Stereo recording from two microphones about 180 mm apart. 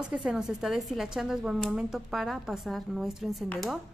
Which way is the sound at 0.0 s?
5° right (ahead or behind).